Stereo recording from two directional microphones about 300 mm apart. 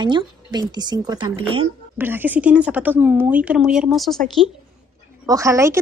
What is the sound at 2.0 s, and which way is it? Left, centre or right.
A woman's voice, centre.